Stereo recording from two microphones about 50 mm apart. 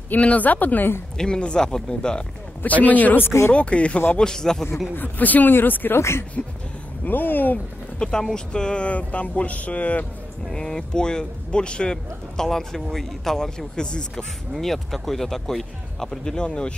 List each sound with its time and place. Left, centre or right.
0.1 s speech: left
1.1 s speech: centre
2.6 s speech: left
3.3 s speech: left
3.5 s speech: left
4.2 s speech: centre
4.9 s speech: left
5.9 s speech: left
7.1 s speech: left
8.0 s speech: centre
10.5 s speech: centre
13.7 s speech: centre
14.5 s speech: centre
16.4 s speech: left